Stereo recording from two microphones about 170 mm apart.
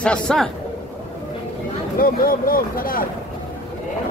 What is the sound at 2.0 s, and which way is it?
Speech, 55° left (ahead or behind).